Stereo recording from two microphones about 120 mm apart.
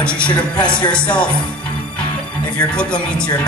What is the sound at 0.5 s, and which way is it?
Speech, 40° left (ahead or behind).